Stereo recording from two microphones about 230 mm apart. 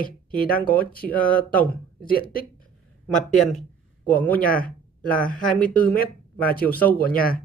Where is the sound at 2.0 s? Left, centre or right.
Left.